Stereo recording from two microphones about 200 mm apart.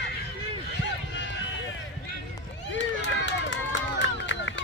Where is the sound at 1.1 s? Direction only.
60° left (ahead or behind).